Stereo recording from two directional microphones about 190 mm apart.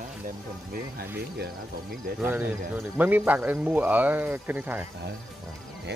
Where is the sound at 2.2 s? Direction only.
10° right (ahead or behind).